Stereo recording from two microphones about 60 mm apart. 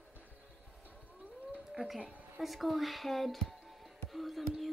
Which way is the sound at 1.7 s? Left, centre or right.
Centre.